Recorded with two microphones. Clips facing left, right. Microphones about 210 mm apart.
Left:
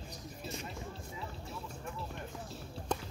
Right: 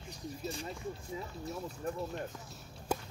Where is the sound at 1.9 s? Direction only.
35° right (ahead or behind).